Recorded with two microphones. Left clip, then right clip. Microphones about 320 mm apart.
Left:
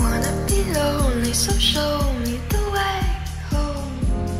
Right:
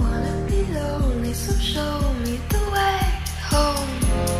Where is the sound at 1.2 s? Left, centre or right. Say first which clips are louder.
Left 7 dB; centre.